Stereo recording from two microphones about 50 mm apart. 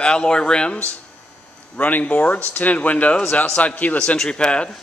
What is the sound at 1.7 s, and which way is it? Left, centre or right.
Speech, left.